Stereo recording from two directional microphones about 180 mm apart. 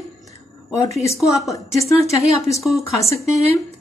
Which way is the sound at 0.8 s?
15° left (ahead or behind).